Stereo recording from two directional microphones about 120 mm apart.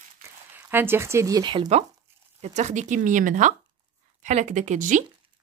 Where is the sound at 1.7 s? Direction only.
65° right (ahead or behind); by 5.0 s 90° right.